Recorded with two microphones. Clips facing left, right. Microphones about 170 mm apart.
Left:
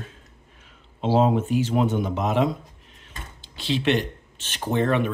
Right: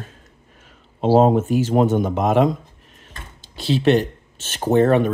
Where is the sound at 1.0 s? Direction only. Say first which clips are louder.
Right 6 dB; 45° right (ahead or behind).